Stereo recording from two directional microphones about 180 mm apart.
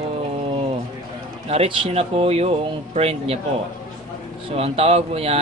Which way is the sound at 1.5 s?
30° right (ahead or behind).